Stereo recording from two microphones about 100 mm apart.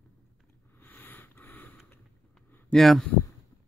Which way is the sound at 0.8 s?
20° left (ahead or behind).